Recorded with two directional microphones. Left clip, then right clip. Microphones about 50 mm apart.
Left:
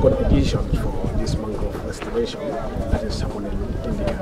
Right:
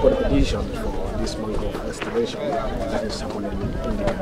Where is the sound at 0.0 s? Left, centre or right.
Centre.